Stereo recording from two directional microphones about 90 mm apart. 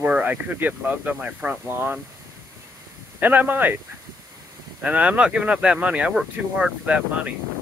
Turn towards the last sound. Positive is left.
turn(degrees=-15)  # may be behind; listen again after turning